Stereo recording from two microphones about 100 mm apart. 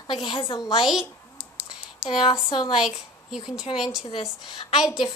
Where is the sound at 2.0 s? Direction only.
60° left (ahead or behind).